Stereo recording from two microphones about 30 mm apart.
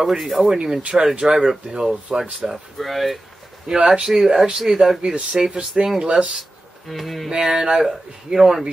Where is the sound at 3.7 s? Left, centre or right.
Right.